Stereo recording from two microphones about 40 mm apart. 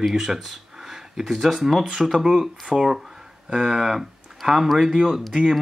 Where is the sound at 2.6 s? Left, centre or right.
Centre.